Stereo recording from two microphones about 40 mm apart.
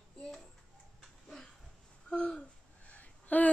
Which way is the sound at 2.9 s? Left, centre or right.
Left.